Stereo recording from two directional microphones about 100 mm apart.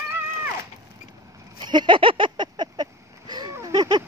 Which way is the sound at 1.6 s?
50° right (ahead or behind).